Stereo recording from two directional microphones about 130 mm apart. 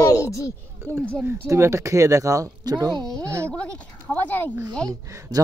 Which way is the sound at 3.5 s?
10° left (ahead or behind).